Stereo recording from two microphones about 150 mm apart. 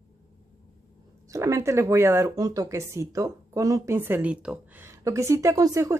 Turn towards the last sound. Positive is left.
turn(degrees=-20)  # may be behind; listen again after turning